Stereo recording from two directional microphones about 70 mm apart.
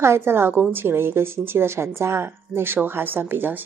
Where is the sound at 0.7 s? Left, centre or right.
Right.